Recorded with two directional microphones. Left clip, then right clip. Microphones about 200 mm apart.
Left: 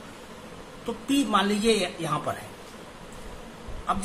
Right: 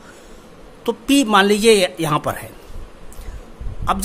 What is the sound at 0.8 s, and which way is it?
Speech, 55° right (ahead or behind).